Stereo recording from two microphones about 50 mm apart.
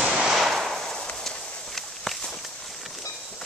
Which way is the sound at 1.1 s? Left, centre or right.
Centre.